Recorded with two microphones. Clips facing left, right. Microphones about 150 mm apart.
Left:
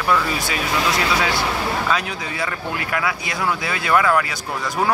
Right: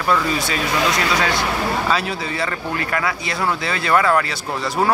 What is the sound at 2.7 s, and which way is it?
Speech, 5° left (ahead or behind).